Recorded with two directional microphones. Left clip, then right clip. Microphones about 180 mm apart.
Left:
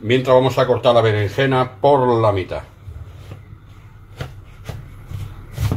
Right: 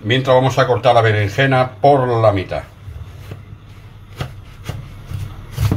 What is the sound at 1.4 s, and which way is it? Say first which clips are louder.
Speech: right 4 dB; 30° left (ahead or behind).